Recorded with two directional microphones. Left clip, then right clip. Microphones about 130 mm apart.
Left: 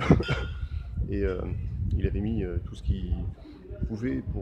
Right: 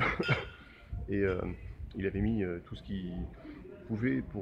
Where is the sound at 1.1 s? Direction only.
25° left (ahead or behind).